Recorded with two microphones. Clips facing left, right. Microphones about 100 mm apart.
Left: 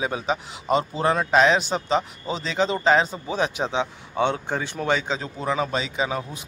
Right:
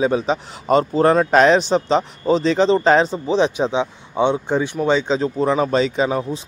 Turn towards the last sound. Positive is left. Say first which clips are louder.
# right 7 dB
turn(degrees=-35)  # may be behind; listen again after turning